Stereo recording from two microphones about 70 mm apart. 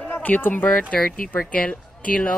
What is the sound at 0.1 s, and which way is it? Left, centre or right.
A woman's voice, left.